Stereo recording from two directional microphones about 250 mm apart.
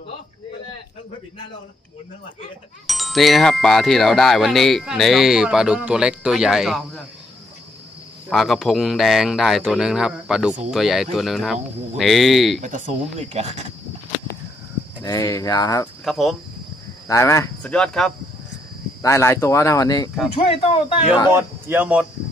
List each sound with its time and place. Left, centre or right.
2.9 s speech: centre
8.3 s speech: centre
12.6 s speech: right
15.0 s speech: centre
16.0 s cricket: centre
17.1 s speech: centre
21.3 s speech: centre